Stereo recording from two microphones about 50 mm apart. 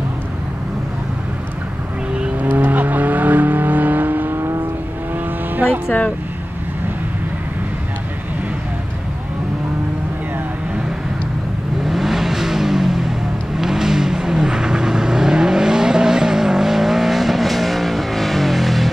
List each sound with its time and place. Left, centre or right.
2.3 s vehicle: right
11.8 s vehicle: centre